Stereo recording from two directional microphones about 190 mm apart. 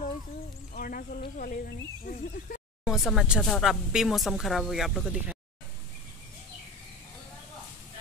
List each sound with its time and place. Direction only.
0.7 s speech: 45° left (ahead or behind)
2.8 s speech: centre (ahead or behind)